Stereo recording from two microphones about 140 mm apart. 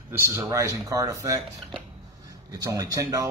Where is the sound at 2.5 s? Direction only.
25° right (ahead or behind).